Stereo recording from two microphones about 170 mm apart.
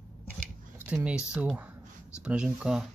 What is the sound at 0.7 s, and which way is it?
Speech, 10° right (ahead or behind).